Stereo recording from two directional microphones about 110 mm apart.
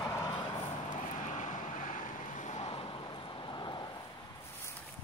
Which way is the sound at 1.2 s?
90° left.